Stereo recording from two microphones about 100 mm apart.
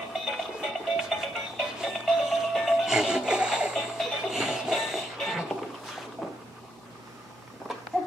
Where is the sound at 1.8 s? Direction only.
5° right (ahead or behind).